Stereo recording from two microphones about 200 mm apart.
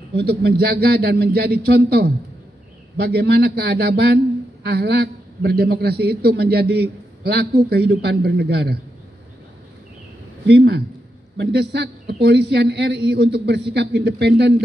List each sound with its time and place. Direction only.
0.1 s a man's voice: 55° right (ahead or behind)
10.4 s a man's voice: 55° right (ahead or behind)